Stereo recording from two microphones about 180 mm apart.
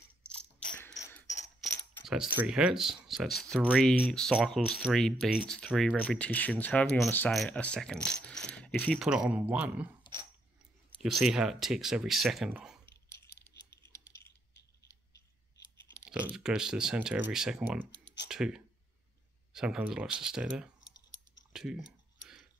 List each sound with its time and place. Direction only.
0.2 s a sound: 5° left (ahead or behind)
0.9 s mechanisms: 15° left (ahead or behind)
1.6 s speech: centre (ahead or behind)
10.1 s a sound: 25° left (ahead or behind)
11.0 s speech: centre (ahead or behind)
16.1 s speech: 5° right (ahead or behind)